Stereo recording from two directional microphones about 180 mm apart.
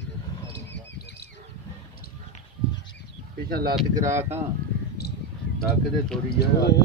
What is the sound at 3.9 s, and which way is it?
Speech, 15° right (ahead or behind).